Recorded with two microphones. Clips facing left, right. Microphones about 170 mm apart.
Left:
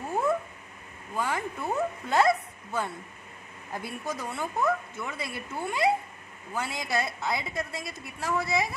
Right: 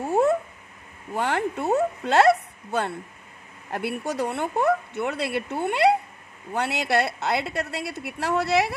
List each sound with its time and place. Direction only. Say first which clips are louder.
0.1 s cat: right 6 dB; 70° right (ahead or behind)
1.1 s a woman's voice: right 6 dB; 70° right (ahead or behind)